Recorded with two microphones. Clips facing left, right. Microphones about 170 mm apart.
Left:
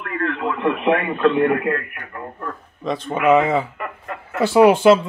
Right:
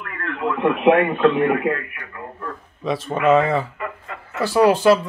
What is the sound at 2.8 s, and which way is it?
Speech, 5° right (ahead or behind).